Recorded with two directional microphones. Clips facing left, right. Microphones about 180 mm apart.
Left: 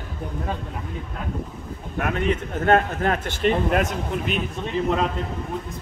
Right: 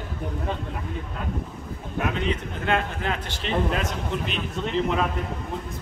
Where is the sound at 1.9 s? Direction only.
50° left (ahead or behind).